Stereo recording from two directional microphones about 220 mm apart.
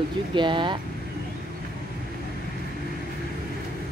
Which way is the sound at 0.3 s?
20° right (ahead or behind).